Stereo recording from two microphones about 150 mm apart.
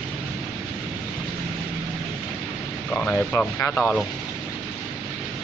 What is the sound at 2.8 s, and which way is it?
Speech, 10° left (ahead or behind).